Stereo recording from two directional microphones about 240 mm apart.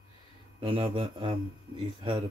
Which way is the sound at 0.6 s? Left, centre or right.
Right.